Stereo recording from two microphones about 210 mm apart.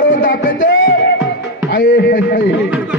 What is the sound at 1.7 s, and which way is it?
Speech, 45° left (ahead or behind).